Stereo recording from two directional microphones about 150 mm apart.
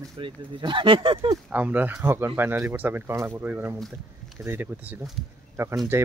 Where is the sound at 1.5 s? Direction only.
10° right (ahead or behind).